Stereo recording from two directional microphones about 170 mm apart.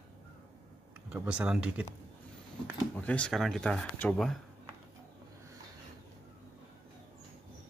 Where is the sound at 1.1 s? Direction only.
5° right (ahead or behind).